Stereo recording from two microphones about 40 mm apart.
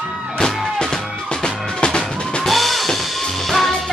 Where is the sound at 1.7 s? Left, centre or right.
Left.